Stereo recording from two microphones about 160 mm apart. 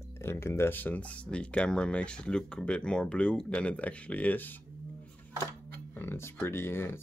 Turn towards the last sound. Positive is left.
turn(degrees=15)  # may be behind; listen again after turning